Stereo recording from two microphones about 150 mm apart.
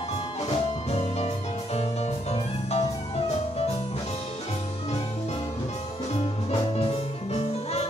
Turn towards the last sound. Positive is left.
turn(degrees=40)  # may be behind; listen again after turning